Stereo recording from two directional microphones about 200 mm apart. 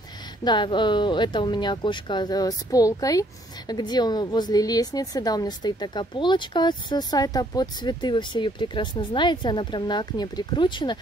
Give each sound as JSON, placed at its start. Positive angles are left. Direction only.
{"t": 0.4, "sound": "speech", "side_deg": 20}